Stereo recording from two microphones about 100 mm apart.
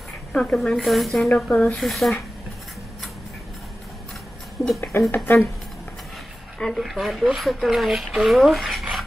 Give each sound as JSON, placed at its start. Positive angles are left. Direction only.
{"t": 0.3, "sound": "speech", "side_deg": 10}
{"t": 4.7, "sound": "speech", "side_deg": 25}
{"t": 6.6, "sound": "speech", "side_deg": 0}